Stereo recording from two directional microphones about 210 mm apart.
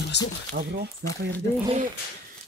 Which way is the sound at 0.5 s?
50° right (ahead or behind).